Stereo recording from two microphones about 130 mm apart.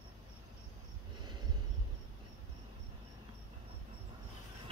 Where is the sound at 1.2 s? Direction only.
35° right (ahead or behind).